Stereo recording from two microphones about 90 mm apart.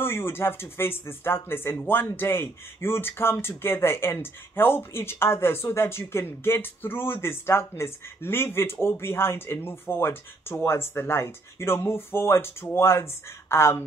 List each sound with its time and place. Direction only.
0.0 s speech: 25° left (ahead or behind)